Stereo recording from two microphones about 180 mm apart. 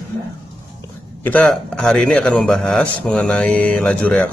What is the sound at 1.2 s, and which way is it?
A man's voice, 5° left (ahead or behind).